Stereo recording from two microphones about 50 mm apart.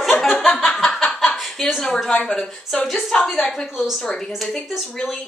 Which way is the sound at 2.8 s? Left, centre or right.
Centre.